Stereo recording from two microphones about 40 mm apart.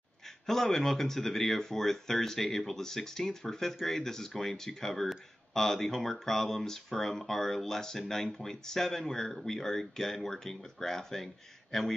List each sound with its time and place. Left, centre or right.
0.5 s speech: centre